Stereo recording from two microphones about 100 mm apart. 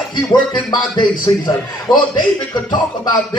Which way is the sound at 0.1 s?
50° left (ahead or behind).